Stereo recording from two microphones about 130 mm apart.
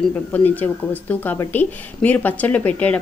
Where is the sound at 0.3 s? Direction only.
15° left (ahead or behind).